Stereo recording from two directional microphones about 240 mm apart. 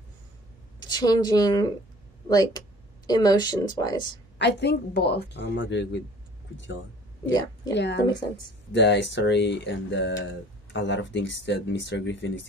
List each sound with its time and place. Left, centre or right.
0.7 s a woman's voice: centre
4.4 s speech: left